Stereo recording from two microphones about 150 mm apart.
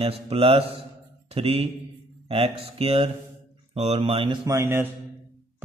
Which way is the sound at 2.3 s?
40° right (ahead or behind).